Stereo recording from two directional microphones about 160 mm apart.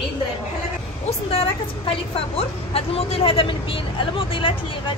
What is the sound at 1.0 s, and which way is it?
A woman's voice, 35° left (ahead or behind).